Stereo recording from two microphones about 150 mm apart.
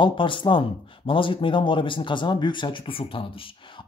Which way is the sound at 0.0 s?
35° left (ahead or behind).